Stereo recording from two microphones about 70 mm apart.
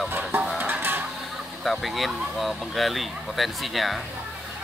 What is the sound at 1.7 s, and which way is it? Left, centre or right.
Speech, centre.